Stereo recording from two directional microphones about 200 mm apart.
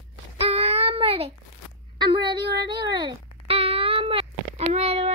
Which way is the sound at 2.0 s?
20° right (ahead or behind).